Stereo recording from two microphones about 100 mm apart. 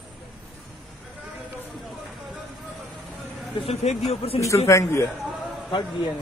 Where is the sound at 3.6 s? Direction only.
90° left.